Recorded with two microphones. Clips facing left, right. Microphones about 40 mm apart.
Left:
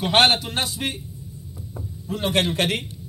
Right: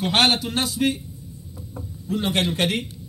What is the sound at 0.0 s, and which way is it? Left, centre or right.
Speech, left.